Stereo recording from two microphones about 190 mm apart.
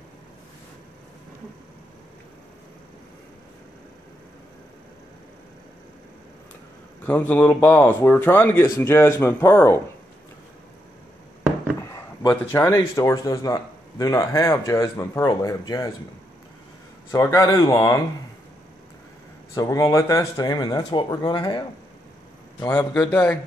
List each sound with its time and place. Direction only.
7.1 s speech: 10° left (ahead or behind)
11.9 s speech: 20° left (ahead or behind)
17.1 s speech: 15° left (ahead or behind)
19.5 s speech: 20° left (ahead or behind)